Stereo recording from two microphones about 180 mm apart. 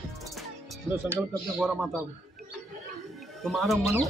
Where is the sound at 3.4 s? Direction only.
Centre (ahead or behind).